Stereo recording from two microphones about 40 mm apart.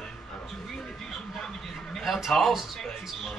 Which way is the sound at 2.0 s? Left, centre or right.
Centre.